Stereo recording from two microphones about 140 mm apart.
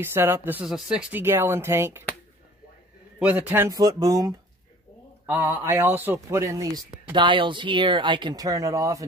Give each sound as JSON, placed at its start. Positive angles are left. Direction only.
{"t": 0.0, "sound": "speech", "side_deg": -15}
{"t": 1.2, "sound": "speech", "side_deg": -15}
{"t": 3.2, "sound": "speech", "side_deg": -10}
{"t": 3.7, "sound": "a man's voice", "side_deg": -25}
{"t": 5.2, "sound": "a man's voice", "side_deg": -15}